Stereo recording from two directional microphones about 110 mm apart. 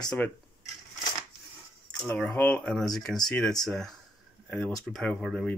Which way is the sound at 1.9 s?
10° left (ahead or behind).